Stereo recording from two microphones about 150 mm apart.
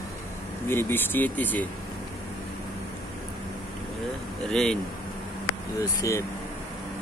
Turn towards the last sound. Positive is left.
turn(degrees=20)  # may be behind; listen again after turning